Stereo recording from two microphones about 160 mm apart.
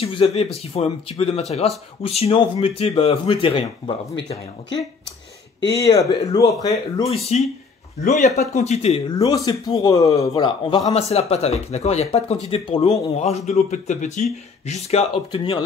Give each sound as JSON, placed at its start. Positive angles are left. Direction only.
{"t": 0.0, "sound": "a man's voice", "side_deg": 40}
{"t": 5.7, "sound": "speech", "side_deg": 20}
{"t": 7.0, "sound": "a man's voice", "side_deg": 40}
{"t": 9.2, "sound": "a man's voice", "side_deg": 25}
{"t": 13.2, "sound": "speech", "side_deg": 40}